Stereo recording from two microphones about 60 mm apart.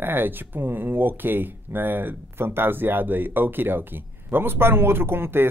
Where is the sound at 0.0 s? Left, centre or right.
Right.